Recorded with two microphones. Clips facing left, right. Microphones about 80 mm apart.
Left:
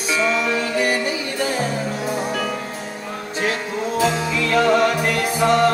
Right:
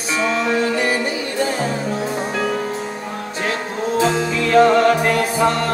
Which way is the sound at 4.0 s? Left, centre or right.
Right.